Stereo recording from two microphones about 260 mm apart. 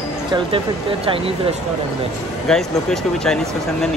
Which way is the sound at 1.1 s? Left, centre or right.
Right.